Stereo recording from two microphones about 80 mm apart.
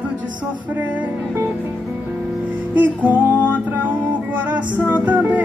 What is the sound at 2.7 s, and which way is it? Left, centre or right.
Music, right.